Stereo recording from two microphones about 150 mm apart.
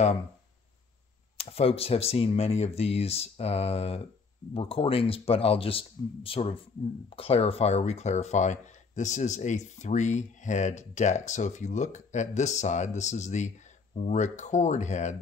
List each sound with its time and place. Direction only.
1.4 s speech: 40° left (ahead or behind)